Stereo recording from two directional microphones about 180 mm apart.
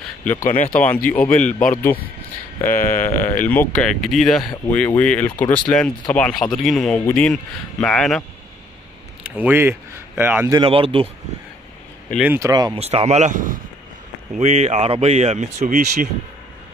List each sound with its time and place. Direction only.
0.2 s speech: 10° left (ahead or behind)
0.5 s speech: 50° left (ahead or behind)
0.7 s speech: 10° left (ahead or behind)
9.2 s speech: 10° right (ahead or behind)
10.5 s speech: 30° right (ahead or behind)
12.2 s speech: 15° right (ahead or behind)
12.7 s speech: 35° right (ahead or behind)
14.4 s speech: 35° right (ahead or behind)